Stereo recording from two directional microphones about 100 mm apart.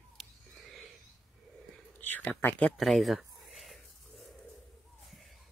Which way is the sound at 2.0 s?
15° left (ahead or behind).